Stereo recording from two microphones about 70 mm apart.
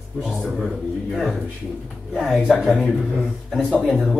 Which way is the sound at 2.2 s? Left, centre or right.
Centre.